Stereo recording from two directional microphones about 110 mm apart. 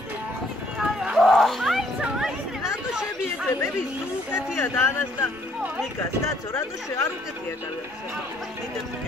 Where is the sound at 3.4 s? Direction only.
25° left (ahead or behind).